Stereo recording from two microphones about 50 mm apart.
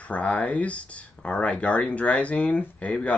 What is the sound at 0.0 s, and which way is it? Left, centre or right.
Speech, left.